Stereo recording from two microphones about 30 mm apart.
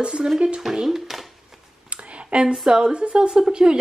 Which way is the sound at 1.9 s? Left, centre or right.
Right.